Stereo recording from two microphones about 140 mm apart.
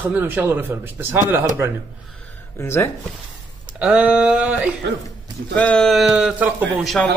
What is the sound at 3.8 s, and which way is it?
Speech, 5° right (ahead or behind).